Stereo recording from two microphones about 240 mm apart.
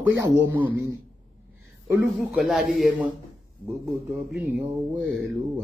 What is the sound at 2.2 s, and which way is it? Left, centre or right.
Speech, centre.